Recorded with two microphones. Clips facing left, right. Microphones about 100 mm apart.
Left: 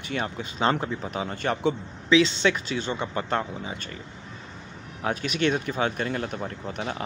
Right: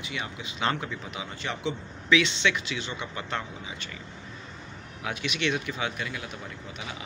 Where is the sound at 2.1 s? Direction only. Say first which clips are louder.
Left 4 dB; 35° left (ahead or behind).